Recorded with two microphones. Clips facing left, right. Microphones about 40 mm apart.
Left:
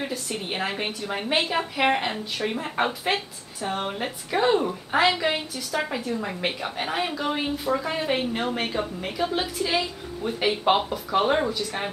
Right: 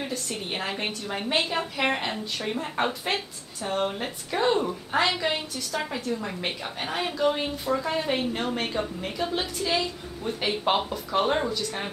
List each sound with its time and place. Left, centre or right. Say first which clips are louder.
0.0 s a woman's voice: left 2 dB; centre